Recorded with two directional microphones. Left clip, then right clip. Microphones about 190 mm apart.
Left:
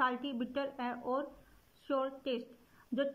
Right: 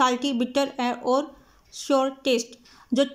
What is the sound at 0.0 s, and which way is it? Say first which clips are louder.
Speech: right 12 dB; 20° right (ahead or behind).